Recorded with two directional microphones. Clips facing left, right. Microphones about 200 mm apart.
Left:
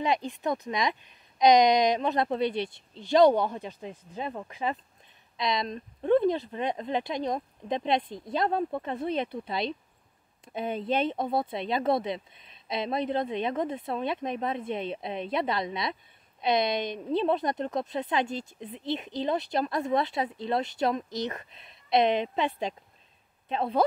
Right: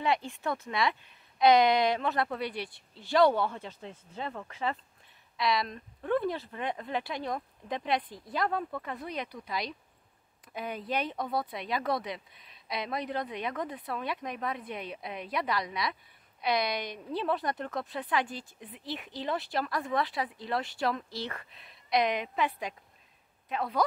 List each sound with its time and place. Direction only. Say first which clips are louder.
0.0 s a woman's voice: left 2 dB; 20° left (ahead or behind)